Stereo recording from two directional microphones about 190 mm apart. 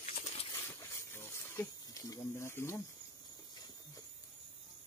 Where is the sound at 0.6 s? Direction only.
15° left (ahead or behind).